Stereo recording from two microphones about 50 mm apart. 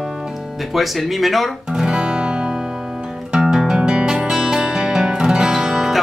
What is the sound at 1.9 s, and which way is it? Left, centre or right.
Music, centre.